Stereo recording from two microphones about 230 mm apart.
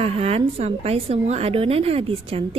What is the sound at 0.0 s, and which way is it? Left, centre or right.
A woman's voice, right.